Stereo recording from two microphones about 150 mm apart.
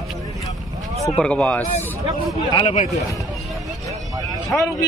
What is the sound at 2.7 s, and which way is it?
Speech, 45° left (ahead or behind).